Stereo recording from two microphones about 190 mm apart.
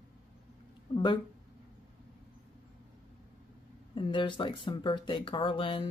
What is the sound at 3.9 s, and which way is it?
Speech, 25° left (ahead or behind).